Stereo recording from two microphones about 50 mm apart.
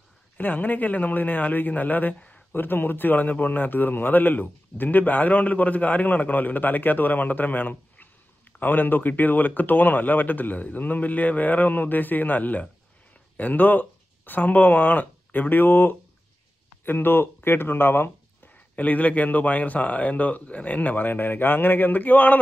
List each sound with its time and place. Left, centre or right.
0.4 s a man's voice: left
2.1 s a sound: left
2.5 s a man's voice: left
18.5 s a man's voice: left